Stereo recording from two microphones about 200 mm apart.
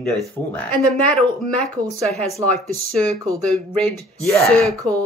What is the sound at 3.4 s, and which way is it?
Speech, 5° left (ahead or behind).